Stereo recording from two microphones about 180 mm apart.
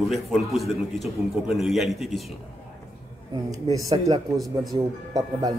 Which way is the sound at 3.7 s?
20° right (ahead or behind).